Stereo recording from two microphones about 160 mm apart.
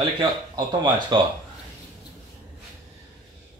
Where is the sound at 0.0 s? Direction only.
30° right (ahead or behind).